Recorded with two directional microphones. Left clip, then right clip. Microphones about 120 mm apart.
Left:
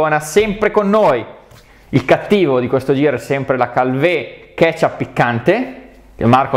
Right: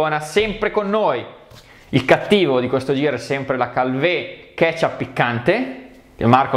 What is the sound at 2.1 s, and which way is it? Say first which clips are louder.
Speech: left 2 dB; 25° left (ahead or behind).